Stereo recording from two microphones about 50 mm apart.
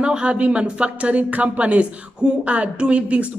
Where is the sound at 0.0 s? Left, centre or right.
Right.